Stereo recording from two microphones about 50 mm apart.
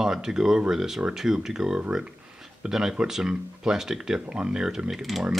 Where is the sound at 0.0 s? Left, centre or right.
Centre.